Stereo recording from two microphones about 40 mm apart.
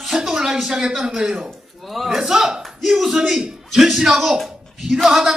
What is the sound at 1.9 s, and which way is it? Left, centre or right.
Speech, centre.